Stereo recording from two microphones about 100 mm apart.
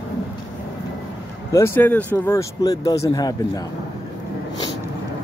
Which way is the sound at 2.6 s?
35° left (ahead or behind).